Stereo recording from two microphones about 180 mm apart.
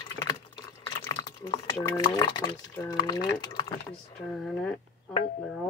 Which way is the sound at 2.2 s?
25° left (ahead or behind).